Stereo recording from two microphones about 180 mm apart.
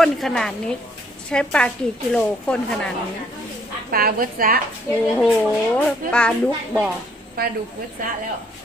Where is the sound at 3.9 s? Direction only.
55° right (ahead or behind).